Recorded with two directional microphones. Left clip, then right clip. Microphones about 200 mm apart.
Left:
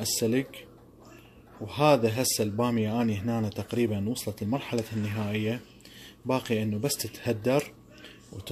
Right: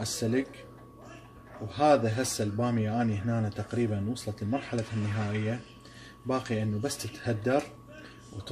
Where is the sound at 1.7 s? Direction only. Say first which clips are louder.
Left 1 dB; 40° left (ahead or behind).